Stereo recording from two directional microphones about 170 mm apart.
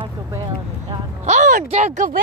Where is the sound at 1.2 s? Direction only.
45° right (ahead or behind).